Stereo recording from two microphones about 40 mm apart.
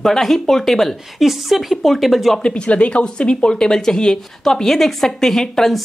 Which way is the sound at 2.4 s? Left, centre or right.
Left.